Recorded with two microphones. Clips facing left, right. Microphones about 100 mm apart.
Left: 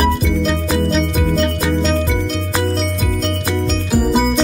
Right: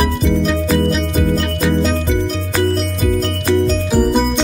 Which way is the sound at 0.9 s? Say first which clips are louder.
Even; centre (ahead or behind).